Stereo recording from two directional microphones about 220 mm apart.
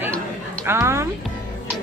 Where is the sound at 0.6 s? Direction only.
10° right (ahead or behind).